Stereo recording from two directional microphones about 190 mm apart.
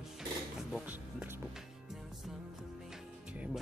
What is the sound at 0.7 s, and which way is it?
Speech, 5° right (ahead or behind).